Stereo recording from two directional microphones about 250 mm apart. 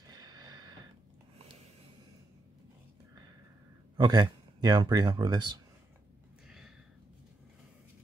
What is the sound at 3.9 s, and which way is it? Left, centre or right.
Speech, centre.